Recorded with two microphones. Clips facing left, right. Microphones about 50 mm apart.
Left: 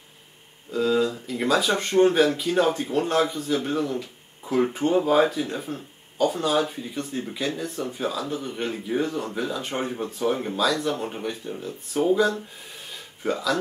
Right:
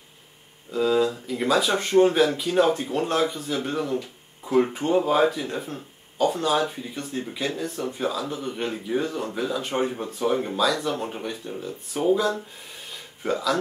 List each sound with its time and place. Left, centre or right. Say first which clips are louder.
0.7 s speech: right 1 dB; centre